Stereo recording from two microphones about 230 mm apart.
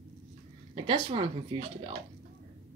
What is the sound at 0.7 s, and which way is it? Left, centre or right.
Speech, right.